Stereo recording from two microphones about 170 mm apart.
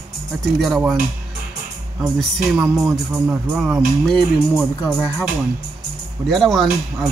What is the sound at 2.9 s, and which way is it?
Speech, 15° right (ahead or behind).